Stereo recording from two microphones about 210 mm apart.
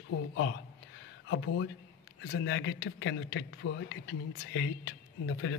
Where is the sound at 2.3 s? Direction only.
60° left (ahead or behind).